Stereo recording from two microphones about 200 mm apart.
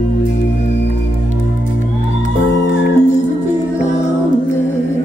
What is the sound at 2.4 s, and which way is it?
Music, 65° left (ahead or behind).